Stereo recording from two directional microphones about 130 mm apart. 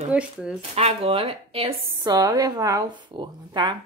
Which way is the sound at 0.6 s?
50° right (ahead or behind).